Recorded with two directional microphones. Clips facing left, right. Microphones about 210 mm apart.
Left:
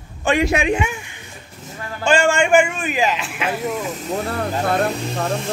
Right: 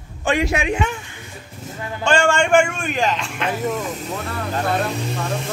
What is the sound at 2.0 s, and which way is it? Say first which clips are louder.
Speech: left 1 dB; 5° left (ahead or behind).